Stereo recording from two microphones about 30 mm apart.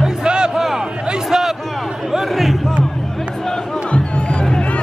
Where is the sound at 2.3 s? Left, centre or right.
Centre.